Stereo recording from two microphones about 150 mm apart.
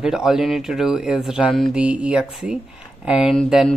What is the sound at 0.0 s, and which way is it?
Speech, 5° right (ahead or behind).